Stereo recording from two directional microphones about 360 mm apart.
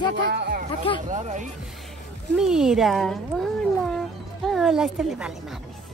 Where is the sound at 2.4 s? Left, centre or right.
Centre.